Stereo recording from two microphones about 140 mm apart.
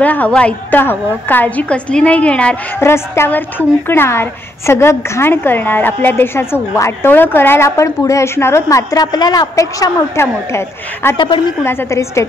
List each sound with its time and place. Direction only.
0.0 s a woman's voice: 10° left (ahead or behind)
11.1 s a woman's voice: 35° left (ahead or behind)
11.6 s a woman's voice: 20° left (ahead or behind)